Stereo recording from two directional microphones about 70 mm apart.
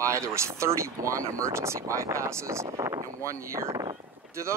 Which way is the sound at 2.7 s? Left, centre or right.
Right.